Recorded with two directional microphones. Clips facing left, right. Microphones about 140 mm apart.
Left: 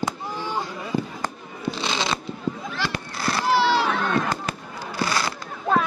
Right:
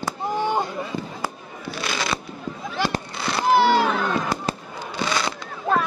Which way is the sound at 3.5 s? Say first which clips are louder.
Right 3 dB; 50° right (ahead or behind).